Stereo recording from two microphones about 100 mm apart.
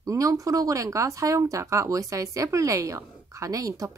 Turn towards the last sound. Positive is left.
turn(degrees=-35)  # may be behind; listen again after turning